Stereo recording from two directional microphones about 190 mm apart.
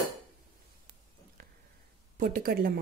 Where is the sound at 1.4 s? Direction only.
50° right (ahead or behind).